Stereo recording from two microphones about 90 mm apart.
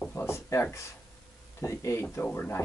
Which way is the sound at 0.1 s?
30° left (ahead or behind).